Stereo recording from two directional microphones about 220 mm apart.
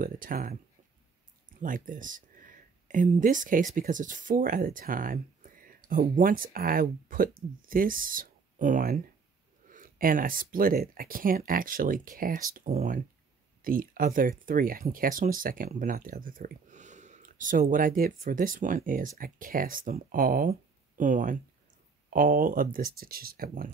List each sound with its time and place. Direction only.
0.0 s speech: 40° right (ahead or behind)
1.6 s speech: 35° right (ahead or behind)